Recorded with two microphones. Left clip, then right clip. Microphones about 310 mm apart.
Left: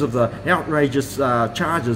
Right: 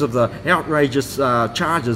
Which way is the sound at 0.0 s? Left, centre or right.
Centre.